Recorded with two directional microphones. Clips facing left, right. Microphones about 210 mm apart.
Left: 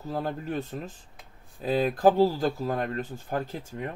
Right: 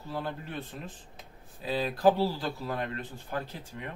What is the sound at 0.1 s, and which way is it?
Speech, 45° left (ahead or behind).